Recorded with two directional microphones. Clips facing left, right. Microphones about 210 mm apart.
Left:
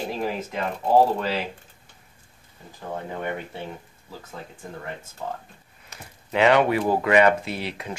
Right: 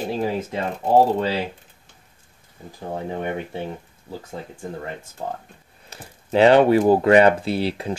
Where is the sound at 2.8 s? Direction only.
25° right (ahead or behind).